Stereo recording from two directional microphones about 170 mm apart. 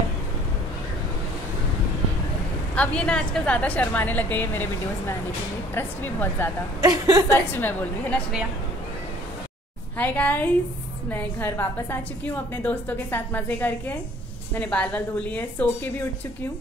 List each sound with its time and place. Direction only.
2.7 s a woman's voice: 5° left (ahead or behind)
6.8 s a woman's voice: 25° right (ahead or behind)
7.3 s a woman's voice: 10° left (ahead or behind)
9.9 s a woman's voice: 10° left (ahead or behind)